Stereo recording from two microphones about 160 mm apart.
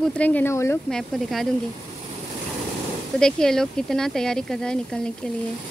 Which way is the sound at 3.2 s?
5° left (ahead or behind).